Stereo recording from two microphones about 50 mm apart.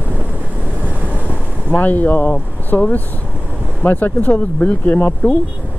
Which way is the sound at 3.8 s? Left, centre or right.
Left.